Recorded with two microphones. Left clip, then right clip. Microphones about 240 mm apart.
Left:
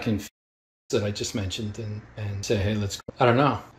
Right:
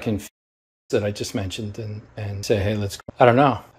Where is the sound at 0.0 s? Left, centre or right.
Centre.